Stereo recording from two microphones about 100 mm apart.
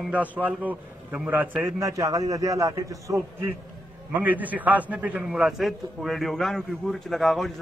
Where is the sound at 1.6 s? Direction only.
30° right (ahead or behind).